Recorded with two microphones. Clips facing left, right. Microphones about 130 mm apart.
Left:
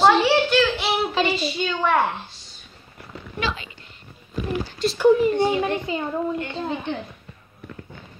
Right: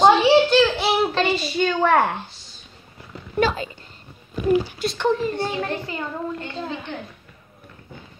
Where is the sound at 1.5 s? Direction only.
50° right (ahead or behind).